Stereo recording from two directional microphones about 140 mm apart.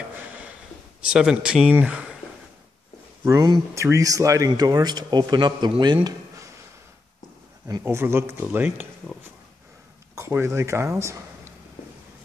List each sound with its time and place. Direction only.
1.0 s speech: 5° right (ahead or behind)
3.3 s speech: 25° right (ahead or behind)
6.0 s a sound: 20° right (ahead or behind)
7.6 s speech: 20° right (ahead or behind)
9.0 s speech: 5° left (ahead or behind)
10.1 s speech: 20° right (ahead or behind)